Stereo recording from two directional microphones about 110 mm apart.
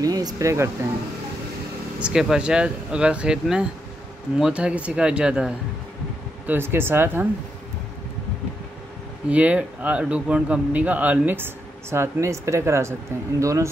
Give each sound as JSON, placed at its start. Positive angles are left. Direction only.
{"t": 0.0, "sound": "speech", "side_deg": -35}
{"t": 2.0, "sound": "speech", "side_deg": -5}
{"t": 6.4, "sound": "speech", "side_deg": -20}
{"t": 9.3, "sound": "speech", "side_deg": -15}